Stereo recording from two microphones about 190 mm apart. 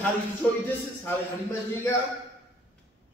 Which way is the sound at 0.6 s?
10° left (ahead or behind).